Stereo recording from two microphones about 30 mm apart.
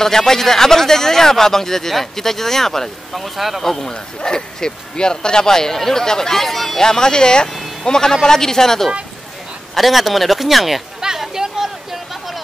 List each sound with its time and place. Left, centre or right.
0.0 s speech: centre
3.1 s speech: centre
3.6 s speech: centre
3.9 s speech: left; by 6.8 s centre
6.8 s speech: left
9.8 s speech: centre
11.1 s a sound: centre